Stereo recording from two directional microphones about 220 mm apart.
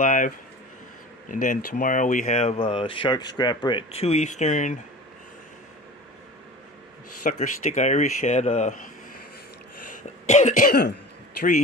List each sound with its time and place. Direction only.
0.0 s speech: 35° left (ahead or behind)
1.3 s speech: 35° left (ahead or behind)
7.2 s speech: 35° left (ahead or behind)
9.8 s throat clearing: 35° left (ahead or behind)